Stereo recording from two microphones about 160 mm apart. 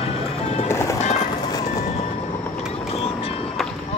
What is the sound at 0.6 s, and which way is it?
Music, 15° left (ahead or behind).